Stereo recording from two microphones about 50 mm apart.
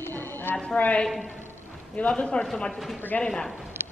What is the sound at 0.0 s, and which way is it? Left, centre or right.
Music, left.